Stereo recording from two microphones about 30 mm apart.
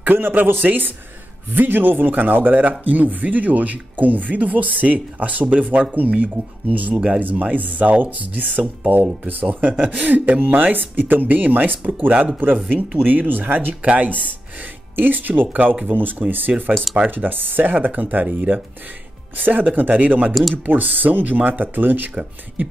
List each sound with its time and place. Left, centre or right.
0.0 s speech: right
2.8 s speech: right
7.2 s speech: right
9.9 s speech: right
11.8 s speech: right
13.0 s speech: right
13.8 s speech: right
15.0 s speech: right
15.4 s speech: right
15.9 s speech: right
16.9 s speech: right
18.5 s speech: right
19.3 s speech: right
22.6 s speech: right